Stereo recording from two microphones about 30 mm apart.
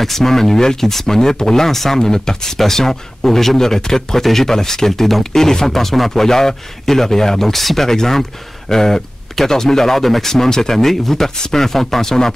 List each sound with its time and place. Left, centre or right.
0.0 s speech: centre
2.0 s speech: left